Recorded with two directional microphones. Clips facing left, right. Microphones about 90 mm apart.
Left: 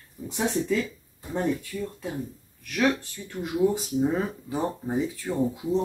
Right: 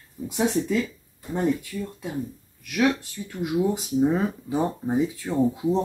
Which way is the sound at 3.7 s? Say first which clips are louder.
Right 3 dB; 15° right (ahead or behind).